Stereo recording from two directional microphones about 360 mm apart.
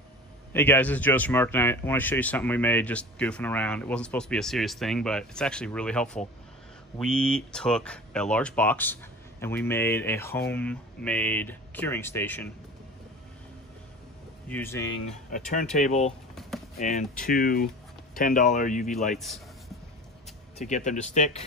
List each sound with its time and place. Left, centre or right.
0.5 s speech: centre
14.5 s speech: centre
15.0 s speech: left
16.3 s a sound: centre
16.7 s speech: centre
19.1 s speech: centre
20.5 s speech: centre